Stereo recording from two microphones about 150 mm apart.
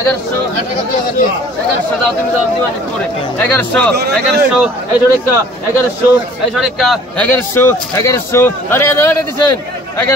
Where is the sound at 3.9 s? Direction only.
90° right.